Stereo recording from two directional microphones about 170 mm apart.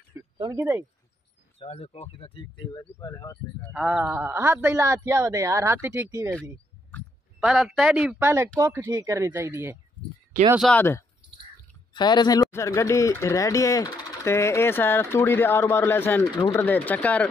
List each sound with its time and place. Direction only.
0.4 s speech: 20° right (ahead or behind)
1.6 s speech: 35° left (ahead or behind)
3.0 s speech: 20° left (ahead or behind)
3.7 s speech: 5° right (ahead or behind)
7.3 s speech: centre (ahead or behind)
10.6 s speech: 10° left (ahead or behind)
11.9 s speech: 25° left (ahead or behind); by 17.3 s 10° left (ahead or behind)